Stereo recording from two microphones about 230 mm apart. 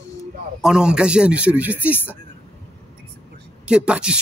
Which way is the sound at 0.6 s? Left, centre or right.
Centre.